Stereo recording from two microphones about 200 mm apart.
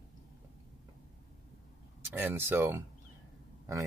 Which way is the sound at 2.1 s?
10° right (ahead or behind).